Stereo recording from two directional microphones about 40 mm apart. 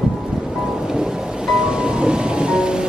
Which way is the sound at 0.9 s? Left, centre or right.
Centre.